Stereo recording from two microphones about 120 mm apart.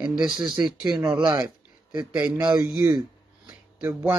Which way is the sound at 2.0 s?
10° right (ahead or behind).